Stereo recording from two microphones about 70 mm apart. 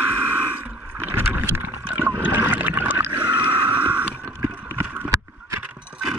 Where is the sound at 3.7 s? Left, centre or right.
Right.